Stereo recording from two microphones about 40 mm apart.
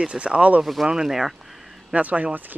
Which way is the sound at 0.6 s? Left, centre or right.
Centre.